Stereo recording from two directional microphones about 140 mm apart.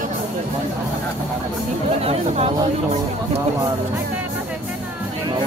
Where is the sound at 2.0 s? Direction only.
50° right (ahead or behind).